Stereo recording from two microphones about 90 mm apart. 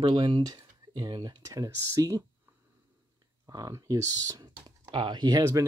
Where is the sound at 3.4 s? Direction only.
40° right (ahead or behind).